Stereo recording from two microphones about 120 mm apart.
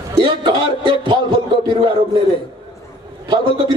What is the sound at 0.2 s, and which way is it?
Speech, 40° right (ahead or behind).